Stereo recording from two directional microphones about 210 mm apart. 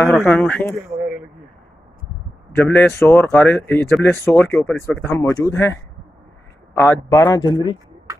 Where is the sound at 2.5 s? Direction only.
10° left (ahead or behind).